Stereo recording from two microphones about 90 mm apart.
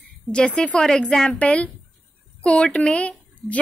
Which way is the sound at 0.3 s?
10° left (ahead or behind).